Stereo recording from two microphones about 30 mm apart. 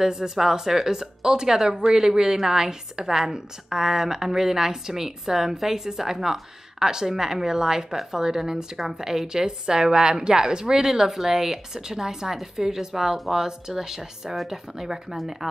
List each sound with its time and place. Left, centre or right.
0.0 s a woman's voice: centre
6.8 s a woman's voice: centre